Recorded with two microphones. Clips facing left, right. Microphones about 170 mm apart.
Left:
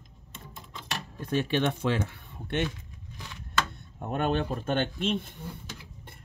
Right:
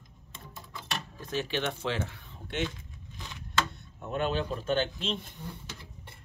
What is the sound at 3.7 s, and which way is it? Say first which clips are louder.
Speech: left 2 dB; 55° left (ahead or behind).